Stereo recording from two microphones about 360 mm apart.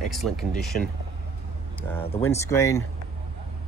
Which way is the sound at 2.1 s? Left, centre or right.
Centre.